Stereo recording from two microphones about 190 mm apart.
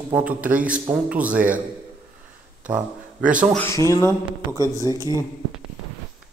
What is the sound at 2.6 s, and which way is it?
Speech, 5° right (ahead or behind).